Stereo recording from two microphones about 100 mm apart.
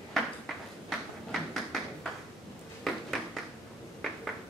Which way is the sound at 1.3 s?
5° left (ahead or behind).